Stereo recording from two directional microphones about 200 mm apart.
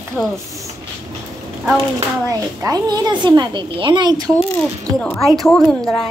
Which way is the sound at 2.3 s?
20° right (ahead or behind).